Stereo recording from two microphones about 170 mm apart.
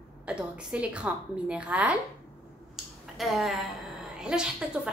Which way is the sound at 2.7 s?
Centre (ahead or behind).